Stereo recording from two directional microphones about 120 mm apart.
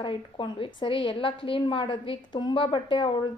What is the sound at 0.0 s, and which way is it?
A woman's voice, 45° left (ahead or behind).